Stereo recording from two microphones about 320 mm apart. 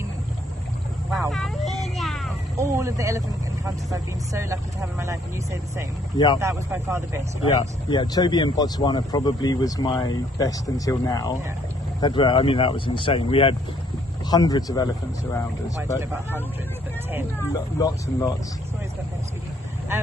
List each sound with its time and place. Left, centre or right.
1.1 s a sound: centre
3.6 s speech: centre
6.1 s speech: centre
6.4 s speech: centre
7.9 s speech: centre
16.0 s speech: centre
17.7 s speech: centre